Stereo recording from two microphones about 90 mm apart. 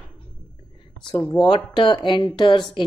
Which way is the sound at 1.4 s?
60° left (ahead or behind).